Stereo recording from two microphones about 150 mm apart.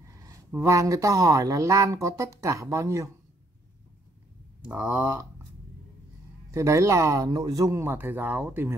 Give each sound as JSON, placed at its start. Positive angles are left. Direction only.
{"t": 0.0, "sound": "speech", "side_deg": -20}
{"t": 4.6, "sound": "speech", "side_deg": -10}
{"t": 6.5, "sound": "speech", "side_deg": -20}